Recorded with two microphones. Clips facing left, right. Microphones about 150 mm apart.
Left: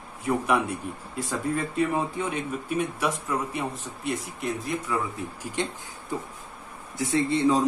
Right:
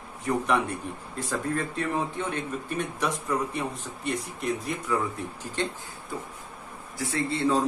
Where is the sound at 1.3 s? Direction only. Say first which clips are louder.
Left 1 dB; 10° left (ahead or behind).